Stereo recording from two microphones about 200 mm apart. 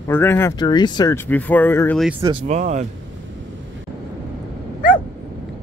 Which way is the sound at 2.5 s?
35° right (ahead or behind).